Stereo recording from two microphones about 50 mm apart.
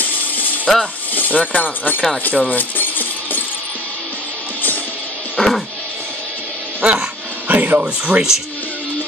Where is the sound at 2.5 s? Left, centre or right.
Left.